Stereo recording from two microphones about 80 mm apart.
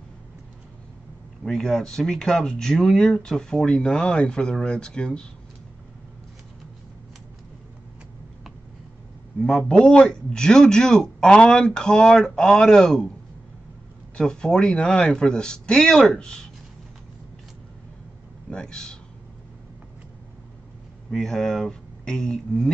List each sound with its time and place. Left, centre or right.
1.4 s speech: centre
9.4 s speech: centre
14.1 s speech: centre
18.5 s speech: centre
21.1 s speech: centre